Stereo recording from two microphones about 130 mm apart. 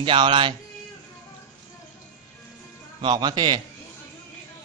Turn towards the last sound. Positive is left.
turn(degrees=-35)  # may be behind; listen again after turning